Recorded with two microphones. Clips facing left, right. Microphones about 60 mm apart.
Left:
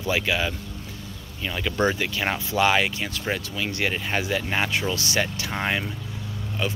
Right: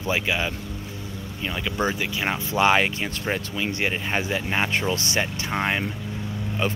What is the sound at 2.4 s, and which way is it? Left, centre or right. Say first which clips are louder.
Speech: right 2 dB; right.